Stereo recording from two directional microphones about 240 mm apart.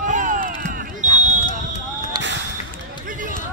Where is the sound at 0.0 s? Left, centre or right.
Right.